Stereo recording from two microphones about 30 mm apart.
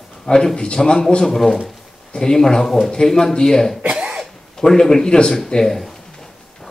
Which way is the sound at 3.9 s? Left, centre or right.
Right.